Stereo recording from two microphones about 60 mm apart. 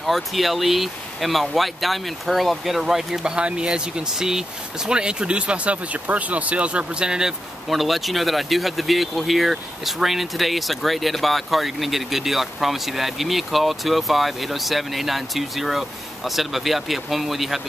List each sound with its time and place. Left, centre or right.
0.0 s speech: centre